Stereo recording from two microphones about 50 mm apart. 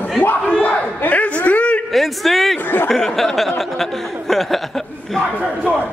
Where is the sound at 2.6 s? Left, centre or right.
Left.